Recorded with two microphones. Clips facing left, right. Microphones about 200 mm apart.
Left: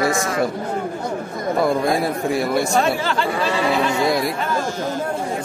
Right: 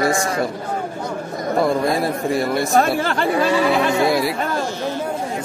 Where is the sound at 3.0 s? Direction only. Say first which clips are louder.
Right 1 dB; 50° right (ahead or behind).